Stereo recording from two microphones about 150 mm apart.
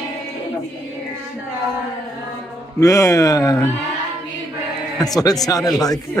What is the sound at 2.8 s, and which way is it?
Speech, 20° left (ahead or behind).